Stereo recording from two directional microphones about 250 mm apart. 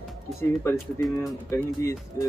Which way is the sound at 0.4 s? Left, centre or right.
Centre.